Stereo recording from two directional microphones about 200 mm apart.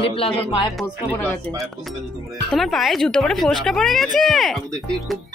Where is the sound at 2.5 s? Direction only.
Centre (ahead or behind).